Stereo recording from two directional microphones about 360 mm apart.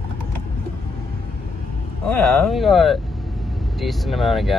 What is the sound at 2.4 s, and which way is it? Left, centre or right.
Speech, centre.